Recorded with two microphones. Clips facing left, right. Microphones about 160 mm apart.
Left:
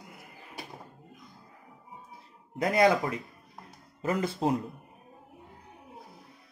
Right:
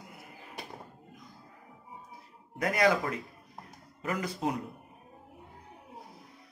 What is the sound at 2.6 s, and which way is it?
Speech, 25° left (ahead or behind).